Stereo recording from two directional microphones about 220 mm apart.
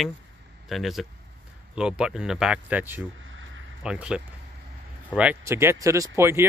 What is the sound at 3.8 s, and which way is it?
Speech, 5° right (ahead or behind).